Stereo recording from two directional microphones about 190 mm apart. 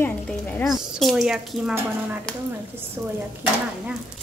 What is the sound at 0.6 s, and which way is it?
A woman's voice, centre (ahead or behind).